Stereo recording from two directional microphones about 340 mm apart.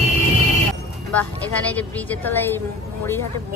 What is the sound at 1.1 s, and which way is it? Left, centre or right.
A woman's voice, centre.